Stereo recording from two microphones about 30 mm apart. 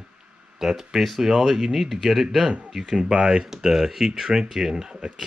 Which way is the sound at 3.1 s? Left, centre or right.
Right.